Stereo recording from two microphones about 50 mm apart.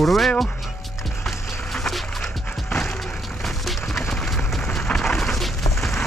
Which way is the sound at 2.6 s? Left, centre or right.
Left.